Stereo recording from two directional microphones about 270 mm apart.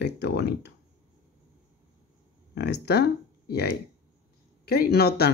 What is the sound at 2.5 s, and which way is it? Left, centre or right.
Speech, left.